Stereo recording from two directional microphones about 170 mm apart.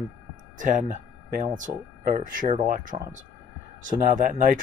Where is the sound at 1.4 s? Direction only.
50° right (ahead or behind).